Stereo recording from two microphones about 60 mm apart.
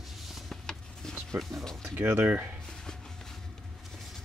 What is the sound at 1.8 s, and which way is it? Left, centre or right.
Speech, right.